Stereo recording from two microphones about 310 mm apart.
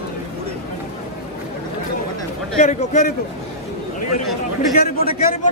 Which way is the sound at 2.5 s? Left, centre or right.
Left.